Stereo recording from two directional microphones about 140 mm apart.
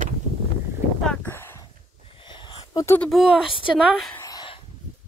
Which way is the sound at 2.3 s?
35° left (ahead or behind).